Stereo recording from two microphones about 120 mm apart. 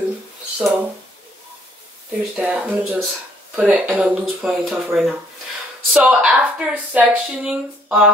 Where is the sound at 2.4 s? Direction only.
10° right (ahead or behind).